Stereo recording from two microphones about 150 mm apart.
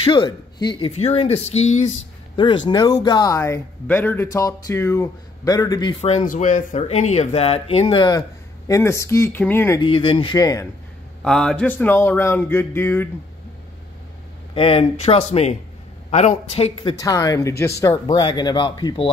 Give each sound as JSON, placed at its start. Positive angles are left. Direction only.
{"t": 0.0, "sound": "speech", "side_deg": 30}
{"t": 0.9, "sound": "speech", "side_deg": 45}
{"t": 2.3, "sound": "speech", "side_deg": 30}
{"t": 5.9, "sound": "speech", "side_deg": 45}
{"t": 6.2, "sound": "speech", "side_deg": 60}
{"t": 7.8, "sound": "speech", "side_deg": 30}
{"t": 9.8, "sound": "speech", "side_deg": 35}
{"t": 11.2, "sound": "speech", "side_deg": 5}
{"t": 14.5, "sound": "speech", "side_deg": 40}
{"t": 17.0, "sound": "speech", "side_deg": 25}
{"t": 18.0, "sound": "speech", "side_deg": 30}